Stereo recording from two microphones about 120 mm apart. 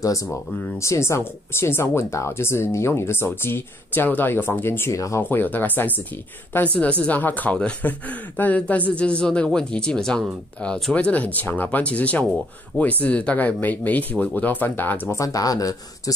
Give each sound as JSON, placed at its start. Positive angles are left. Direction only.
{"t": 0.0, "sound": "speech", "side_deg": 25}